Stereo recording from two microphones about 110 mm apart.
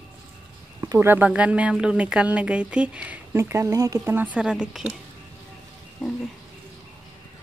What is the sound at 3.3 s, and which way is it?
Speech, 25° right (ahead or behind).